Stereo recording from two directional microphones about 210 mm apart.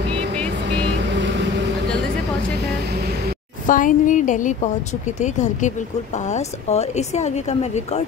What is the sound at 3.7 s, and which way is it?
Speech, 40° left (ahead or behind).